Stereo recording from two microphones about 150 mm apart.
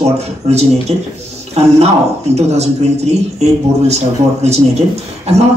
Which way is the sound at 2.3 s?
45° right (ahead or behind).